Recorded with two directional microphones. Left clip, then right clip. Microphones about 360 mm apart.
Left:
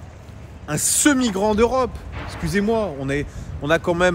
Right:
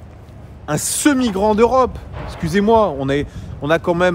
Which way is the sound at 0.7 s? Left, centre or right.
Centre.